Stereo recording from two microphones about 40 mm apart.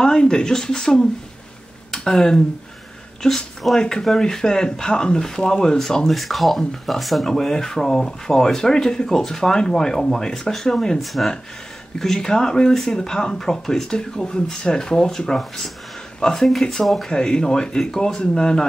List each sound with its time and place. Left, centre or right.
0.0 s speech: centre
7.2 s speech: centre
17.1 s speech: centre